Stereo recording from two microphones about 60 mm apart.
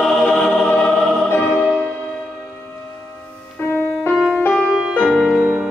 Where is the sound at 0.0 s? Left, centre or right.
Centre.